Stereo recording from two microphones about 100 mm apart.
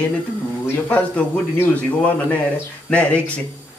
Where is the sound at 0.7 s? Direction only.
15° left (ahead or behind).